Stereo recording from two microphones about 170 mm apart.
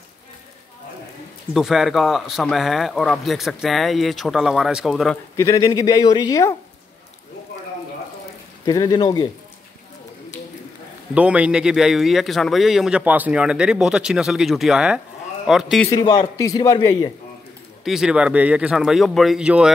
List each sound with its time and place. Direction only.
1.5 s speech: centre (ahead or behind)
5.1 s speech: 15° left (ahead or behind)
8.6 s speech: 20° left (ahead or behind)
11.1 s speech: 5° right (ahead or behind)
16.0 s speech: 25° left (ahead or behind)
17.8 s speech: 5° right (ahead or behind)